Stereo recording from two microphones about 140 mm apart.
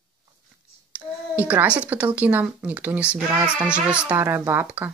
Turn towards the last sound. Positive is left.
turn(degrees=-10)  # may be behind; listen again after turning